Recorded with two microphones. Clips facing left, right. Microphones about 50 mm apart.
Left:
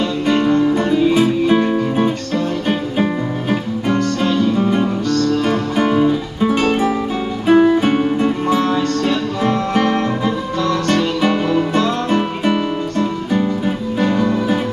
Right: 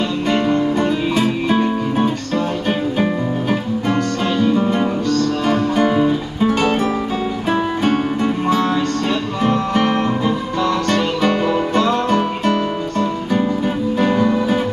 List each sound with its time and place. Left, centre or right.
0.3 s music: right
0.8 s music: centre
3.9 s music: right
5.9 s music: centre
7.8 s music: centre
8.6 s music: centre
10.9 s music: centre
14.0 s music: centre